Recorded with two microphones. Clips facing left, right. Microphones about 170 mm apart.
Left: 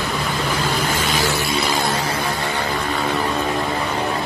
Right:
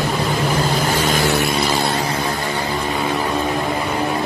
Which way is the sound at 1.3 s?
60° right (ahead or behind).